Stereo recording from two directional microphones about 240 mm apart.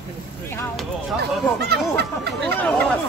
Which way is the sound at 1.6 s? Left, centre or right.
Right.